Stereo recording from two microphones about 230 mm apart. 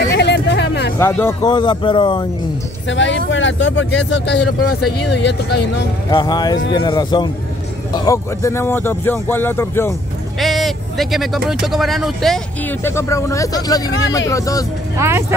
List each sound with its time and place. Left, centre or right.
0.1 s a sound: left
0.9 s a man's voice: centre
2.9 s speech: left
6.0 s a man's voice: centre
15.0 s speech: centre